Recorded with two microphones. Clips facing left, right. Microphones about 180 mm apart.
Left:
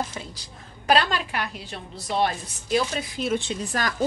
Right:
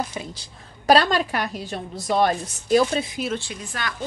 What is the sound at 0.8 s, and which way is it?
A woman's voice, 40° right (ahead or behind).